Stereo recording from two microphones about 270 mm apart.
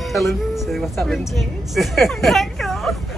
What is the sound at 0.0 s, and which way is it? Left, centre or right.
A woman's voice, centre.